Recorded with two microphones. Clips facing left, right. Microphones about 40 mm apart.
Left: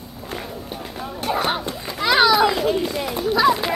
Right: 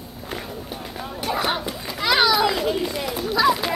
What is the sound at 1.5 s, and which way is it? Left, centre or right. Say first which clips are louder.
Children playing: left 1 dB; centre.